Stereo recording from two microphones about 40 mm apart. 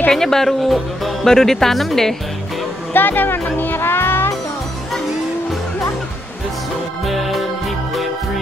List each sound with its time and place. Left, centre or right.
0.1 s speech: centre
2.9 s speech: left
3.8 s music: left
7.1 s music: centre